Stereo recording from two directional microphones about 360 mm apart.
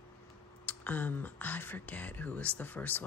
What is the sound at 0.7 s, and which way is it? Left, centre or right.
Speech, centre.